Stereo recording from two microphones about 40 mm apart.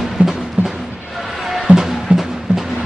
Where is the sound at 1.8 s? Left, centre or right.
Centre.